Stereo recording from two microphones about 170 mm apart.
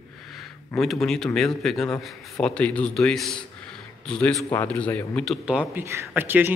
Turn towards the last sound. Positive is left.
turn(degrees=-10)  # may be behind; listen again after turning